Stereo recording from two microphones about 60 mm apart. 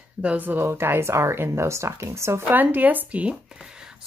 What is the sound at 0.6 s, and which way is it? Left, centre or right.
Speech, right.